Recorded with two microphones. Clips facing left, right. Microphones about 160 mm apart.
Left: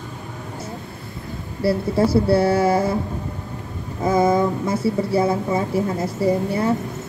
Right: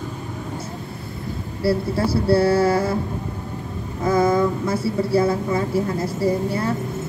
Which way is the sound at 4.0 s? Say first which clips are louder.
Left 1 dB; 20° left (ahead or behind).